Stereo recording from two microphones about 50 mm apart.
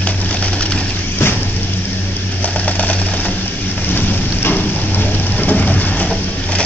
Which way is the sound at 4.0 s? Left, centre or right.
Left.